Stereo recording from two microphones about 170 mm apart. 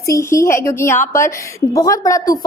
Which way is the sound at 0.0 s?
15° left (ahead or behind).